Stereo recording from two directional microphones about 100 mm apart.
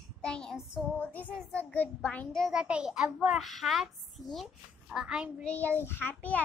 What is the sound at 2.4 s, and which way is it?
A child's voice, 10° right (ahead or behind).